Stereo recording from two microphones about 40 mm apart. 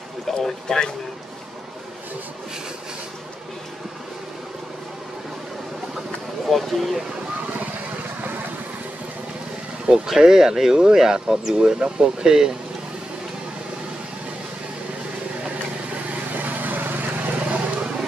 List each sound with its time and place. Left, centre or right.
0.3 s speech: centre
6.5 s speech: centre
10.0 s speech: centre
16.3 s vehicle: right
17.4 s vehicle: right